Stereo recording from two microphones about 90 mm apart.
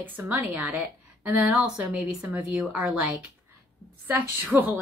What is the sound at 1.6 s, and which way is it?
A woman's voice, 10° right (ahead or behind).